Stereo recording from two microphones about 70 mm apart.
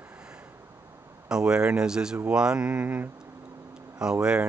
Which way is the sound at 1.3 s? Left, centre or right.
Centre.